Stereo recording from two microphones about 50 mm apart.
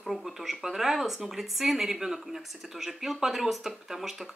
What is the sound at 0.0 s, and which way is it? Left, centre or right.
Speech, centre.